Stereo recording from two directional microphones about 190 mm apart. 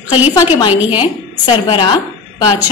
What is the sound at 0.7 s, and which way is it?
Speech, 10° right (ahead or behind).